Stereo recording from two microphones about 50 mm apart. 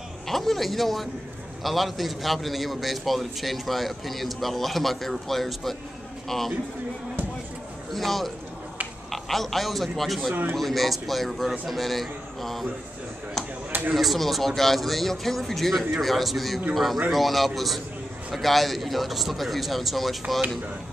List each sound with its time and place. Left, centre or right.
0.3 s a man's voice: centre
7.9 s a man's voice: centre
13.7 s a sound: right
13.9 s a man's voice: centre